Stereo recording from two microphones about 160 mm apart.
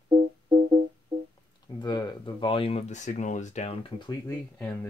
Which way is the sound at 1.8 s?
25° left (ahead or behind).